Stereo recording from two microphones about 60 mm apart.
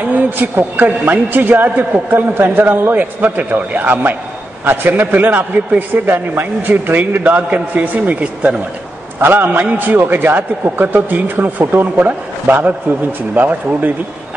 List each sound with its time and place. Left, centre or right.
0.0 s a woman's voice: right
6.7 s a man's voice: right
9.2 s a woman's voice: right